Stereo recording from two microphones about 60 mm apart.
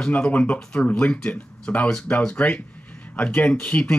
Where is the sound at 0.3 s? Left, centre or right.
Centre.